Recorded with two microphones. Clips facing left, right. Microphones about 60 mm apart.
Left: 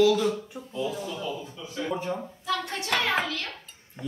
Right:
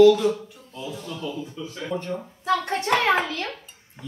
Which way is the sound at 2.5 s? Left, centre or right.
Right.